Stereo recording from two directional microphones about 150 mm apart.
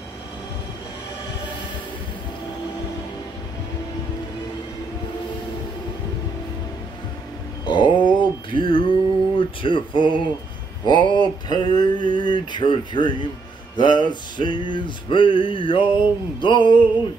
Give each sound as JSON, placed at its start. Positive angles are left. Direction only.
{"t": 7.6, "sound": "a sound", "side_deg": 30}
{"t": 9.4, "sound": "speech", "side_deg": 35}
{"t": 10.9, "sound": "mantra", "side_deg": 30}
{"t": 12.2, "sound": "male singing", "side_deg": 30}